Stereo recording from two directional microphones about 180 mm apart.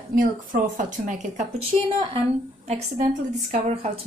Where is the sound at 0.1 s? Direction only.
50° right (ahead or behind).